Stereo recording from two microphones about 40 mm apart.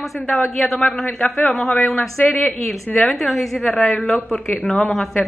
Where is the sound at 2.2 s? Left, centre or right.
Left.